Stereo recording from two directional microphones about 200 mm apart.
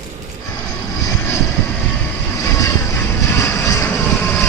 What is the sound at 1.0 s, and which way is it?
Vehicle, 15° left (ahead or behind).